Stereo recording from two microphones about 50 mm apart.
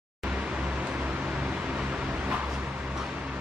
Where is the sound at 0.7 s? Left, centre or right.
Right.